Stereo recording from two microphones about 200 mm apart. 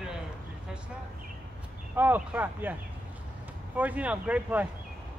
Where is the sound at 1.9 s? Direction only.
10° right (ahead or behind).